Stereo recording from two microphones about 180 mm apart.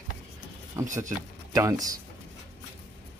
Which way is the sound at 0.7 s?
15° right (ahead or behind).